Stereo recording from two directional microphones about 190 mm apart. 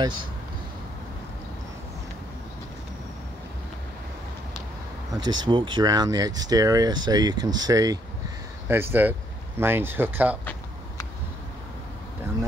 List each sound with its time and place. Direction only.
5.2 s speech: 25° right (ahead or behind)